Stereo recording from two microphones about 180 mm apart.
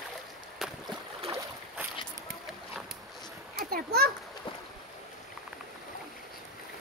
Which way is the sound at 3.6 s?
60° right (ahead or behind).